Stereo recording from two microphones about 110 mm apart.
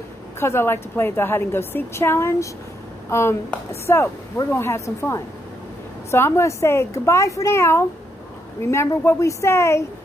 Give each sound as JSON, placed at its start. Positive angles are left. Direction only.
{"t": 0.4, "sound": "a woman's voice", "side_deg": 20}